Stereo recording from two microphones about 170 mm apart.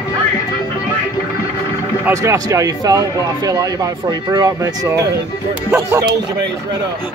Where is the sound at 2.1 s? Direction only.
20° right (ahead or behind).